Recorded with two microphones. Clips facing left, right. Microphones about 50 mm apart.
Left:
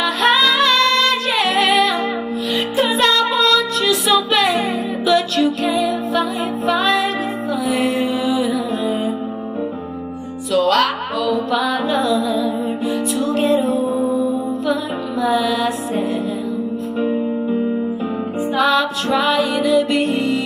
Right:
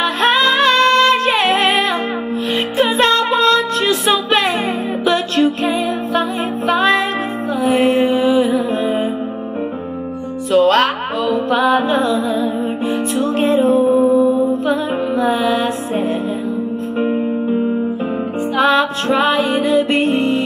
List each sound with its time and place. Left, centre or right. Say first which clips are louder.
0.0 s music: right 1 dB; right
10.5 s music: right 3 dB; right
13.7 s music: right 6 dB; right
14.1 s mantra: right 6 dB; right
14.4 s music: right 4 dB; right
17.1 s music: right 2 dB; right
18.6 s music: right 3 dB; right